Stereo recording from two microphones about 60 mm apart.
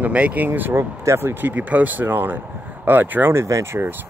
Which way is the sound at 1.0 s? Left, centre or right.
Right.